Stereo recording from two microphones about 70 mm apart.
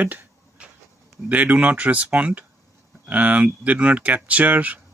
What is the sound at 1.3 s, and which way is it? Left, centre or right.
Speech, right.